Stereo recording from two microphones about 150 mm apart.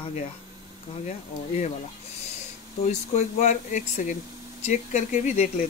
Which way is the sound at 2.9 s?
50° left (ahead or behind).